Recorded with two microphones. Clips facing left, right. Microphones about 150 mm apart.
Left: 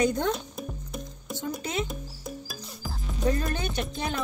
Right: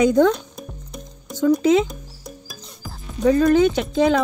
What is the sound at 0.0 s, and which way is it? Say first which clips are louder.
Speech: right 10 dB; 90° right.